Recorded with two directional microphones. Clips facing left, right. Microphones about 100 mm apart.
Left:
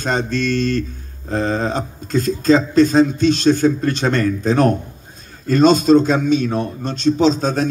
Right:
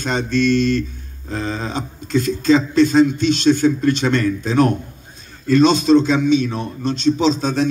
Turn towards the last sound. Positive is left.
turn(degrees=40)  # may be behind; listen again after turning